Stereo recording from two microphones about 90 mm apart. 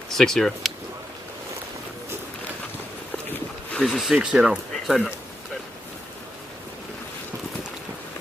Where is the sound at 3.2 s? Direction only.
20° left (ahead or behind).